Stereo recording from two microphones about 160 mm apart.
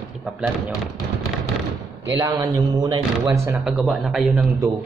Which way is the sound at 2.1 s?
20° right (ahead or behind).